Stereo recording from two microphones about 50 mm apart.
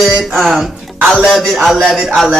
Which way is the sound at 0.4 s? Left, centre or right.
Centre.